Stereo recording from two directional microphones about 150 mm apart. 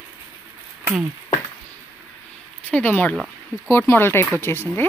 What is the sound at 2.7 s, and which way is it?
Speech, 10° left (ahead or behind).